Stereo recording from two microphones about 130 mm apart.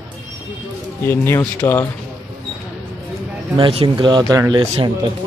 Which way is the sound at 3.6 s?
45° right (ahead or behind).